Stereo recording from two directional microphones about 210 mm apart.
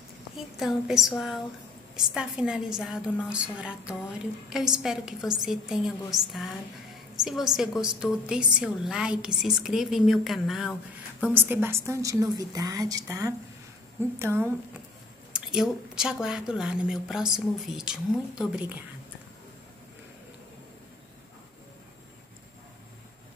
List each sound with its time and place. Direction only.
0.4 s a woman's voice: centre (ahead or behind)
11.3 s a woman's voice: 10° right (ahead or behind)